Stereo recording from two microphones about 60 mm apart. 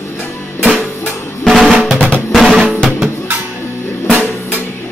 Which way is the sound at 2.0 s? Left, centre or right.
Centre.